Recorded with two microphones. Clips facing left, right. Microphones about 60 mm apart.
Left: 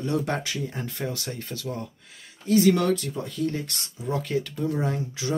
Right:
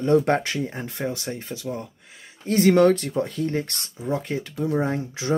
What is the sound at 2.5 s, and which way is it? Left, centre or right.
Speech, right.